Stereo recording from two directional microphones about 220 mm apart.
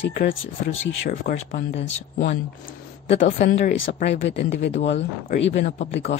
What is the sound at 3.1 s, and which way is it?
Speech, 40° left (ahead or behind).